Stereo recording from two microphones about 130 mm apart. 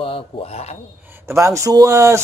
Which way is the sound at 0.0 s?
50° left (ahead or behind).